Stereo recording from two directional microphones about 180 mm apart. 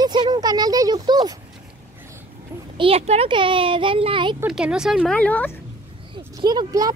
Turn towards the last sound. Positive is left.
turn(degrees=-20)  # may be behind; listen again after turning